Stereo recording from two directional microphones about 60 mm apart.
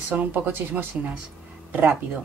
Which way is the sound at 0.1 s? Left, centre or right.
Right.